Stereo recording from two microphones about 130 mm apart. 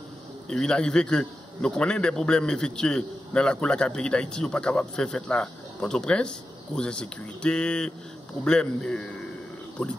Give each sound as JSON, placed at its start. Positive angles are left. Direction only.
{"t": 0.5, "sound": "a man's voice", "side_deg": 5}